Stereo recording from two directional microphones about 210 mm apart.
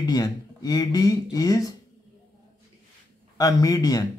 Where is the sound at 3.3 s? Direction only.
15° left (ahead or behind).